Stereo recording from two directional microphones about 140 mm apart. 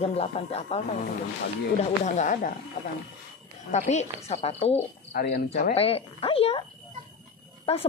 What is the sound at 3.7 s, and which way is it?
A woman's voice, 55° left (ahead or behind).